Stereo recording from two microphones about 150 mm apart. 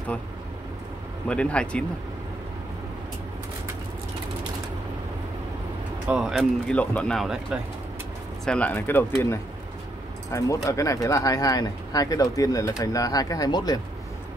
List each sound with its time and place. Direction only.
1.3 s speech: 5° left (ahead or behind)
6.0 s speech: 5° right (ahead or behind)
6.7 s speech: 10° left (ahead or behind)
8.5 s speech: 10° left (ahead or behind)
10.3 s speech: 20° left (ahead or behind)